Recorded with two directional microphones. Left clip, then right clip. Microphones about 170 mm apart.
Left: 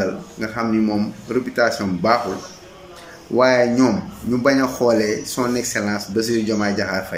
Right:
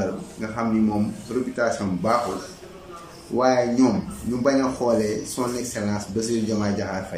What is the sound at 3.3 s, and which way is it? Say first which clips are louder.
Speech: left 5 dB; 10° right (ahead or behind).